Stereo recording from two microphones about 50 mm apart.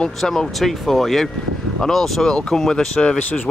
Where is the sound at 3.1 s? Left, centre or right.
Left.